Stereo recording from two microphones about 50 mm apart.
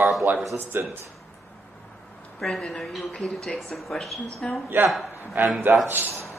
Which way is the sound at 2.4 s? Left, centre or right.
Centre.